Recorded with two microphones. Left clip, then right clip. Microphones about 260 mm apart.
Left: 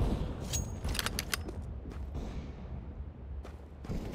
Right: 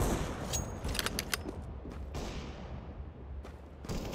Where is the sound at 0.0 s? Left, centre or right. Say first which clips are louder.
Right 4 dB; right.